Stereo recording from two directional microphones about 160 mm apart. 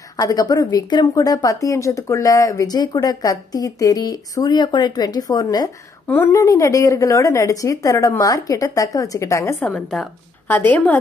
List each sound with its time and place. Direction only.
0.2 s a woman's voice: 20° left (ahead or behind)